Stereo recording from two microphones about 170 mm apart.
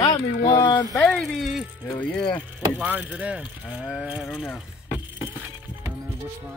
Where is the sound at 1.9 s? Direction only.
10° left (ahead or behind).